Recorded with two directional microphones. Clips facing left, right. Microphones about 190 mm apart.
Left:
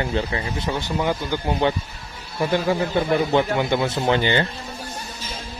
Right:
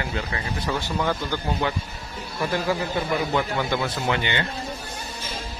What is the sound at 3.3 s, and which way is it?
Speech, 20° left (ahead or behind).